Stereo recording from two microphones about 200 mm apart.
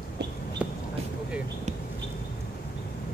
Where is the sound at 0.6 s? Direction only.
5° right (ahead or behind).